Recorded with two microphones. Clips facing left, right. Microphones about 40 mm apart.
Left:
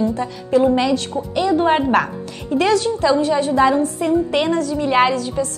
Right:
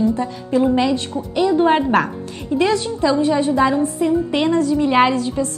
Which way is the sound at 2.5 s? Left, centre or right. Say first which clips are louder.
Left 1 dB; centre.